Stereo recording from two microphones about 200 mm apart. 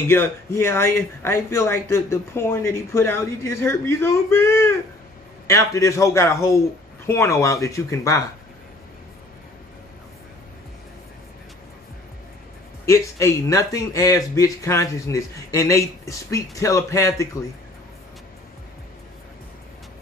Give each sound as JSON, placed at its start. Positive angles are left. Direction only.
{"t": 0.1, "sound": "speech", "side_deg": 10}
{"t": 12.8, "sound": "speech", "side_deg": 15}